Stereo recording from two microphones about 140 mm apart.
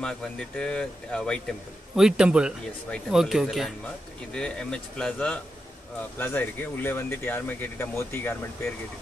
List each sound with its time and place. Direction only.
0.0 s speech: 5° left (ahead or behind)
2.0 s a man's voice: 5° right (ahead or behind); by 8.4 s 15° left (ahead or behind)